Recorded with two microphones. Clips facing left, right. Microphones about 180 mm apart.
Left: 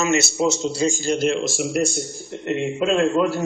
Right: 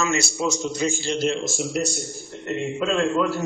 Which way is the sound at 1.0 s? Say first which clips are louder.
Left 3 dB; 45° left (ahead or behind).